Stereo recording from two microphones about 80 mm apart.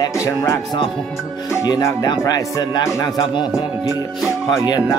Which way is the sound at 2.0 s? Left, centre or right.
Left.